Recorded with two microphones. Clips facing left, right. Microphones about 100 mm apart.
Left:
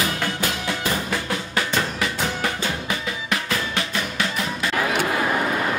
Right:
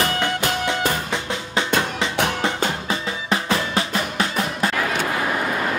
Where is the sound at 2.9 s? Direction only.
30° right (ahead or behind).